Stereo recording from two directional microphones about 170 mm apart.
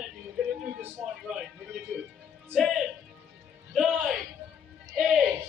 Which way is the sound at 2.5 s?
Centre (ahead or behind).